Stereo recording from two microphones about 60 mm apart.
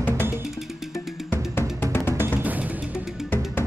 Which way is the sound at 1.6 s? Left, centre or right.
Left.